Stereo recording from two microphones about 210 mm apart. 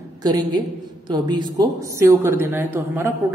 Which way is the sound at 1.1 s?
20° right (ahead or behind).